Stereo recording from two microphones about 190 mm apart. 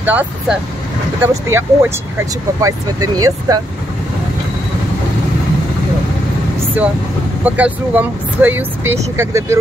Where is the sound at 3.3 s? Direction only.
20° right (ahead or behind).